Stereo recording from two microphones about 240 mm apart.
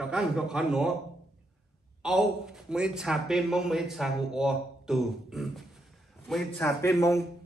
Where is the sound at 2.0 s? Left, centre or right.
Centre.